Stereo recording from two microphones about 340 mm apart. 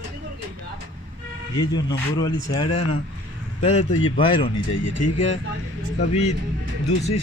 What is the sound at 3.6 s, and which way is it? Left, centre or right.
Speech, centre.